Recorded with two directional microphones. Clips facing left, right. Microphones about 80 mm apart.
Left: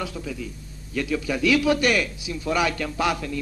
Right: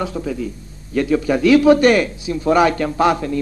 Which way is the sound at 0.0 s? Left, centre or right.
Right.